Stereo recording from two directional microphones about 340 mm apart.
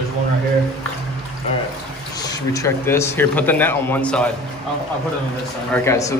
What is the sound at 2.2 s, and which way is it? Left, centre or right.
Speech, centre.